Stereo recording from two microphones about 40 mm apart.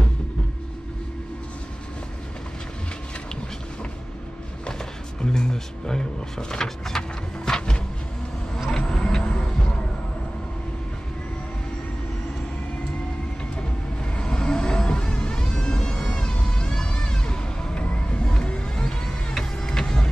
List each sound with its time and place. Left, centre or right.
4.6 s speech: centre
7.0 s horse: centre
8.6 s a sound: centre
14.1 s vehicle: left
16.2 s music: left
17.8 s vehicle: left